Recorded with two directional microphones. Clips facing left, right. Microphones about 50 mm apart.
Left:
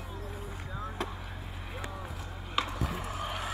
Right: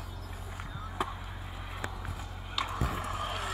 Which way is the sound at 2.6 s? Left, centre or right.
Left.